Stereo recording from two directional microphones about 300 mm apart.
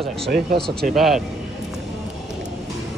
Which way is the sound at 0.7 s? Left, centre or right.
Right.